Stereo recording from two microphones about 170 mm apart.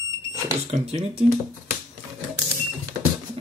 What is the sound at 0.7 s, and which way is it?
Speech, 40° right (ahead or behind).